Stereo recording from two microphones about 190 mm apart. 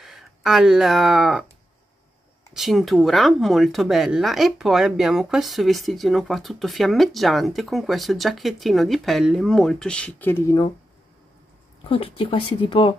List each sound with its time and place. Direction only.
0.0 s speech: centre (ahead or behind)
2.5 s speech: centre (ahead or behind)
11.9 s speech: 30° left (ahead or behind)